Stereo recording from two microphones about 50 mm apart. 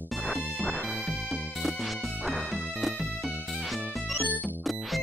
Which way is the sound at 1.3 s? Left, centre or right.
Centre.